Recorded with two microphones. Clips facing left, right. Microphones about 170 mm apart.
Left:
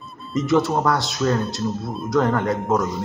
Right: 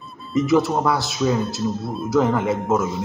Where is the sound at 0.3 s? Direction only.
Centre (ahead or behind).